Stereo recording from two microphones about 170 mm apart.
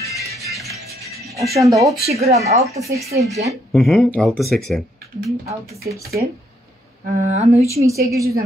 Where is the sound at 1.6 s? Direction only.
20° right (ahead or behind).